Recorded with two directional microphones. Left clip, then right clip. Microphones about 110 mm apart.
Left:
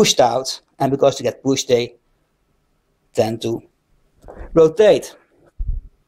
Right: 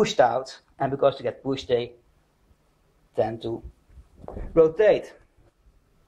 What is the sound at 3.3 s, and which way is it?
Speech, 45° left (ahead or behind).